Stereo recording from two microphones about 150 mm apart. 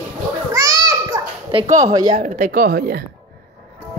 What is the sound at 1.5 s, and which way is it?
Speech, 35° right (ahead or behind).